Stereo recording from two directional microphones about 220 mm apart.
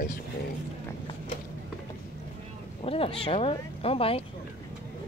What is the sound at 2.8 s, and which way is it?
Speech, 25° left (ahead or behind).